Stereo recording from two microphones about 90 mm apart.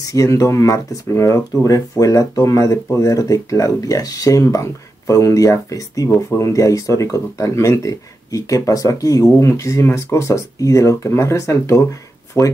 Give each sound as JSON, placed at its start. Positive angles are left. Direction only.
{"t": 0.0, "sound": "speech", "side_deg": 40}